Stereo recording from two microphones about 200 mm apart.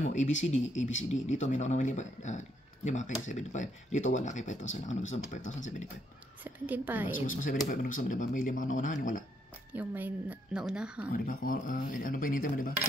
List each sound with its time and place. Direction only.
0.0 s speech: 35° left (ahead or behind)
6.4 s a woman's voice: 10° right (ahead or behind)
7.2 s speech: 40° left (ahead or behind)
9.8 s a woman's voice: 10° right (ahead or behind)
11.1 s speech: 45° left (ahead or behind)